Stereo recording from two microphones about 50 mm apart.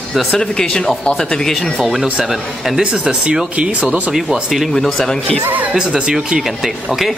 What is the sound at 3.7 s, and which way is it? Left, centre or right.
Speech, right.